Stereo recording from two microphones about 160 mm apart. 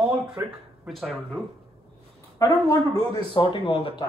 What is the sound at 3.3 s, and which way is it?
Speech, 35° left (ahead or behind).